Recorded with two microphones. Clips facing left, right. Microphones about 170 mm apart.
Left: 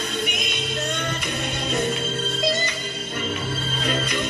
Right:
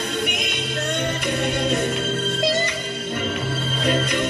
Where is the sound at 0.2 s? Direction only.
60° right (ahead or behind).